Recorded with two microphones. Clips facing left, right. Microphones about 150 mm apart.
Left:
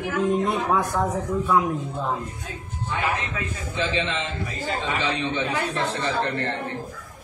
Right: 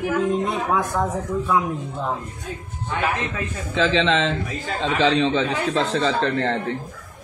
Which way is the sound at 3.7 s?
90° right.